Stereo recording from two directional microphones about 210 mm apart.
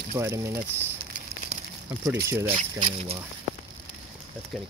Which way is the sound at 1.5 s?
30° right (ahead or behind).